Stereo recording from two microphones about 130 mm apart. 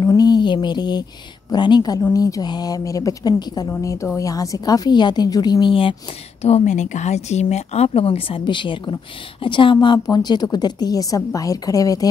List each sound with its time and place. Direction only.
0.0 s a sound: 30° left (ahead or behind)
1.5 s a woman's voice: 35° left (ahead or behind)
6.4 s a woman's voice: 60° left (ahead or behind); by 12.1 s 25° left (ahead or behind)